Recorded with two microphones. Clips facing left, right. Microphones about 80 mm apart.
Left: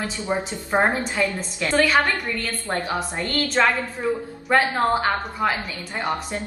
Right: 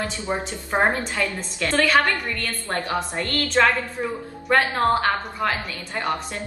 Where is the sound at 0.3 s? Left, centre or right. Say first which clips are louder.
Left 3 dB; centre.